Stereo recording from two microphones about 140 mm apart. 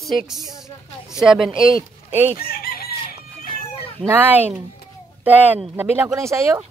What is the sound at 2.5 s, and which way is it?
Chicken, 90° left.